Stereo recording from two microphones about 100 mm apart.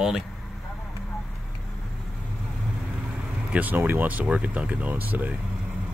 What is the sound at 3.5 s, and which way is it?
Speech, 20° right (ahead or behind).